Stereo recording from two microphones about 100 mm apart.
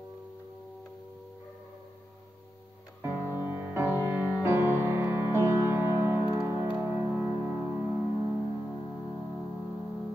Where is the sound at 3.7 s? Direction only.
20° right (ahead or behind).